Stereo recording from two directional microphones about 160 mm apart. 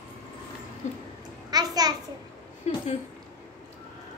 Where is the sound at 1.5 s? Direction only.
25° right (ahead or behind).